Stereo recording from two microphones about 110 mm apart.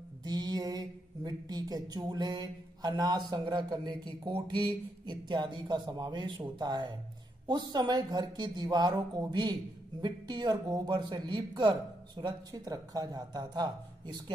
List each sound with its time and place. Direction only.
0.2 s speech: 40° right (ahead or behind)